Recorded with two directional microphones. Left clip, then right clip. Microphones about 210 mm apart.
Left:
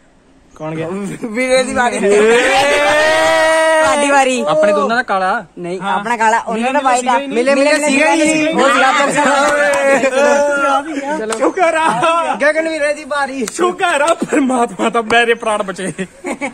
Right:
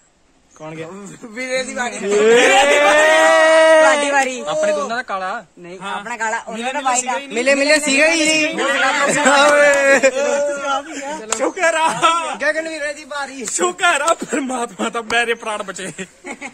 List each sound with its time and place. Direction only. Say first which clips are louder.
1.3 s speech: left 9 dB; 30° left (ahead or behind)
2.2 s vehicle: right 4 dB; centre (ahead or behind)
4.1 s a sound: left 5 dB; 45° left (ahead or behind)
4.5 s a man's voice: left 6 dB; centre (ahead or behind)
6.0 s a man's voice: left 9 dB; 35° left (ahead or behind)
7.3 s a man's voice: even; 40° right (ahead or behind)
8.7 s a man's voice: left 3 dB; 50° left (ahead or behind)
9.0 s a man's voice: left 1 dB; 50° right (ahead or behind)
10.1 s speech: left 6 dB; 20° left (ahead or behind)
11.2 s speech: left 3 dB; 55° right (ahead or behind)
12.4 s a man's voice: left 6 dB; 10° left (ahead or behind)
13.6 s a man's voice: left 2 dB; 45° right (ahead or behind)
14.0 s a man's voice: left 5 dB; 15° right (ahead or behind)